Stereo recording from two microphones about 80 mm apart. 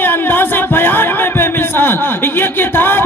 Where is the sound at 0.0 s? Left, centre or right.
Left.